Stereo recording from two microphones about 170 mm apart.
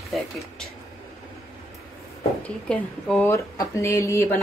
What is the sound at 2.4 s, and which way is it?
Speech, 5° left (ahead or behind).